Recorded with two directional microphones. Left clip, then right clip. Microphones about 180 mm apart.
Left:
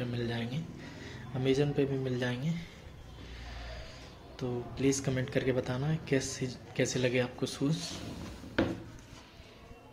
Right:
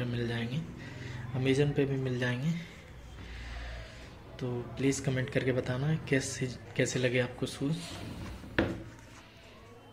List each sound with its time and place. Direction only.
0.0 s a sound: 5° right (ahead or behind)
1.0 s a man's voice: 10° right (ahead or behind)
4.4 s speech: centre (ahead or behind)
7.6 s speech: 20° left (ahead or behind)